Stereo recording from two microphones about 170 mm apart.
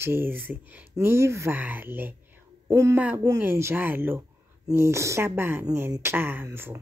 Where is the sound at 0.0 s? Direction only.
15° right (ahead or behind).